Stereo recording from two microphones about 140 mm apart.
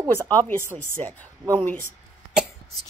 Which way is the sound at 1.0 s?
45° right (ahead or behind).